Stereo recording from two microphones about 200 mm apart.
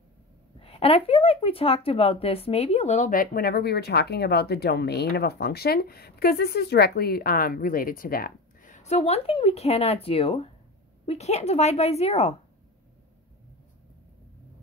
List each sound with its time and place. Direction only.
0.6 s a woman's voice: 30° left (ahead or behind)